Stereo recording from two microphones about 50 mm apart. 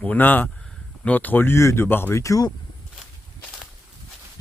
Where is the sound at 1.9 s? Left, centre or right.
Left.